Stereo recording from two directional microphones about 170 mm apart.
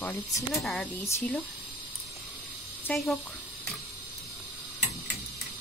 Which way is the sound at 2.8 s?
Centre (ahead or behind).